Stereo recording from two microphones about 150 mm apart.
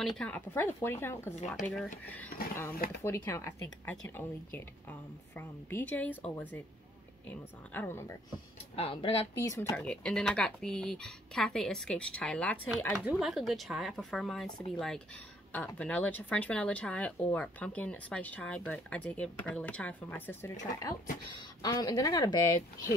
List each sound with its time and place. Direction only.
0.0 s speech: 5° left (ahead or behind)
1.5 s speech: centre (ahead or behind)
2.3 s speech: 90° left
3.0 s speech: 20° left (ahead or behind)
7.7 s speech: 15° left (ahead or behind)
8.7 s speech: 40° left (ahead or behind)
9.4 s speech: 20° left (ahead or behind)
9.8 s speech: 5° left (ahead or behind)
21.6 s speech: 25° left (ahead or behind)